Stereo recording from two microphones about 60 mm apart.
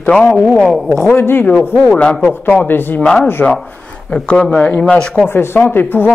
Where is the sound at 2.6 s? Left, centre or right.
Left.